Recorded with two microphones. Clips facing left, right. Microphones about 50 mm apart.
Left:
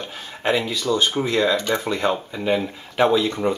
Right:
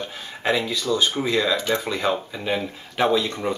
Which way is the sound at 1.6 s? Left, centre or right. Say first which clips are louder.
Left 2 dB; centre.